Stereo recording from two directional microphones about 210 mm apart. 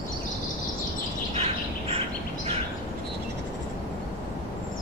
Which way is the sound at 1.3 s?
30° right (ahead or behind).